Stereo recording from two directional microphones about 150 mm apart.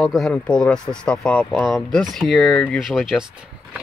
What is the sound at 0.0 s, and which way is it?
Speech, centre (ahead or behind).